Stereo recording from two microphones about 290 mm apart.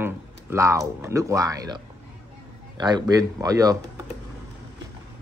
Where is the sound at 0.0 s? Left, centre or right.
Centre.